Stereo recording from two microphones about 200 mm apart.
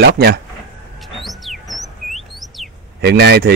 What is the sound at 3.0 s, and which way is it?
Speech, 55° right (ahead or behind).